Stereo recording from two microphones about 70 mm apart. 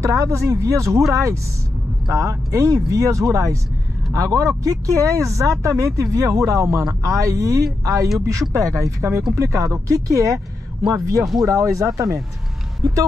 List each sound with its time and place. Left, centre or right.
0.0 s speech: right
12.8 s vehicle: right